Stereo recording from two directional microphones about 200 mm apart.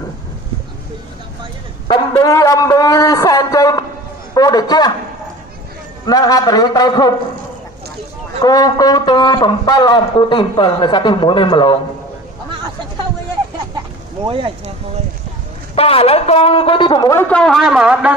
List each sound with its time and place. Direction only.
1.9 s a man's voice: 15° left (ahead or behind)
6.0 s a man's voice: 20° left (ahead or behind)
8.4 s a man's voice: 20° left (ahead or behind)
14.2 s speech: 25° right (ahead or behind)
15.7 s a man's voice: 30° left (ahead or behind)
17.3 s speech: 5° left (ahead or behind)